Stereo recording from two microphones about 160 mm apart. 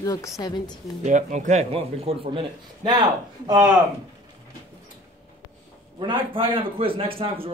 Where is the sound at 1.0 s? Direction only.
50° right (ahead or behind); by 3.6 s 25° right (ahead or behind).